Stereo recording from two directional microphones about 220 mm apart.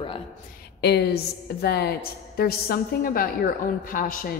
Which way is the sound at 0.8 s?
50° left (ahead or behind).